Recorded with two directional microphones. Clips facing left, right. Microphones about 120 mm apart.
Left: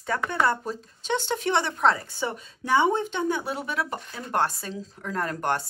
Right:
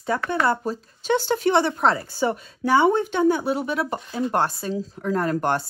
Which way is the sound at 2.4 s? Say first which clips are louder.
Right 2 dB; 50° right (ahead or behind).